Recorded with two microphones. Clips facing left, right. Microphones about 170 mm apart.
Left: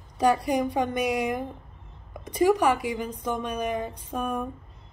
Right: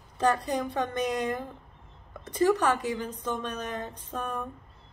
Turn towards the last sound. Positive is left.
turn(degrees=10)  # may be behind; listen again after turning